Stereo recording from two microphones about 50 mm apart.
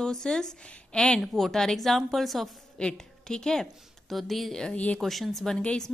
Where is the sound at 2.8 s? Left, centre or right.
Centre.